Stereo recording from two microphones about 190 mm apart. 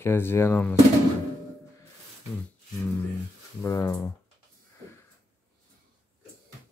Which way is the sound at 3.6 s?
15° left (ahead or behind).